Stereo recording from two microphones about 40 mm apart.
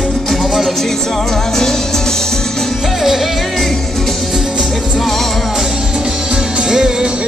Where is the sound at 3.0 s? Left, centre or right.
Centre.